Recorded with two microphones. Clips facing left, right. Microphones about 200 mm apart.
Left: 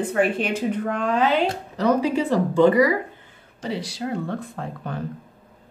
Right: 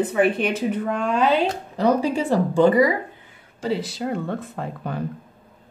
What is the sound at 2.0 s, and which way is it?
Speech, 30° right (ahead or behind).